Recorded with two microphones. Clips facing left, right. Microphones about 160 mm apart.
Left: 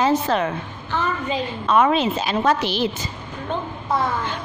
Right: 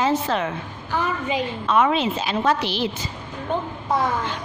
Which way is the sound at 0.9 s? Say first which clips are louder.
Even; 10° right (ahead or behind).